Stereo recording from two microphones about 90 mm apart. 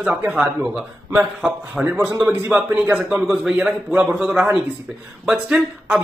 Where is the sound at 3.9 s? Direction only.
10° right (ahead or behind).